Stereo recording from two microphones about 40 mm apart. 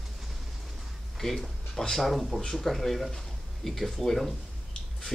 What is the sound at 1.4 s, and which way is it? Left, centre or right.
Speech, centre.